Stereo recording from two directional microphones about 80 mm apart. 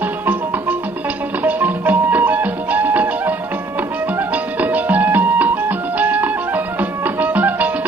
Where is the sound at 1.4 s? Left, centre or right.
Right.